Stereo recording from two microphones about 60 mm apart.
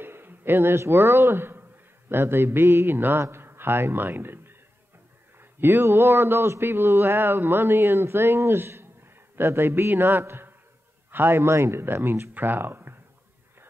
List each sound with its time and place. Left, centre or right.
0.0 s a man's voice: right